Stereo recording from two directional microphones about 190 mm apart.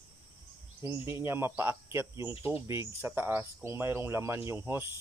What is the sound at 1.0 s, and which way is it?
Speech, 15° right (ahead or behind).